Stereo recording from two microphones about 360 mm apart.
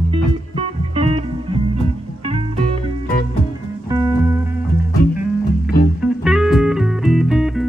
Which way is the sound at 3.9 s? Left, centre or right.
Centre.